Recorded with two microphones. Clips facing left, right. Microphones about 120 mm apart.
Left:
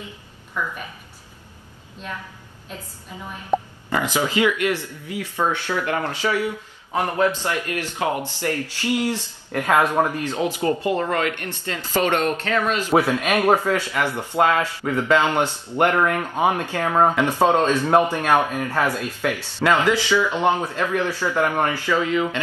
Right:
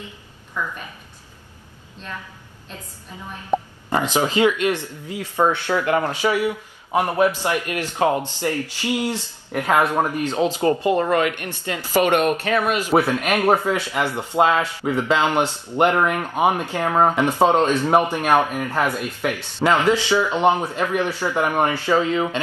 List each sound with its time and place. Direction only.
3.5 s speech: centre (ahead or behind)
3.9 s speech: 20° right (ahead or behind)
5.0 s speech: 40° right (ahead or behind)
5.8 s speech: 15° right (ahead or behind)